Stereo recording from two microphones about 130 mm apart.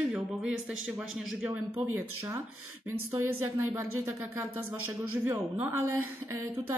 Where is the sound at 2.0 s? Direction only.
20° right (ahead or behind).